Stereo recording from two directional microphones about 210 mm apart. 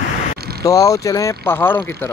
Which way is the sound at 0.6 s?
15° left (ahead or behind).